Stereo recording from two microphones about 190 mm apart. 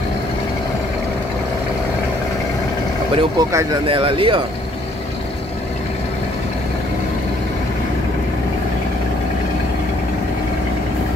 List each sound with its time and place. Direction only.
3.2 s speech: 25° right (ahead or behind)